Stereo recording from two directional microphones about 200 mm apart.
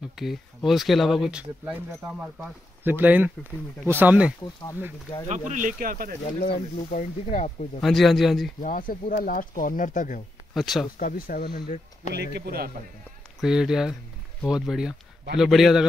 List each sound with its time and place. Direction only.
0.2 s speech: centre (ahead or behind)
5.3 s speech: 40° right (ahead or behind)
6.4 s speech: 40° left (ahead or behind)
7.8 s speech: centre (ahead or behind)
8.5 s speech: 40° left (ahead or behind)
10.5 s speech: centre (ahead or behind)
11.0 s speech: 45° left (ahead or behind)
12.0 s speech: 35° left (ahead or behind)
12.4 s speech: 50° right (ahead or behind)
13.4 s speech: centre (ahead or behind)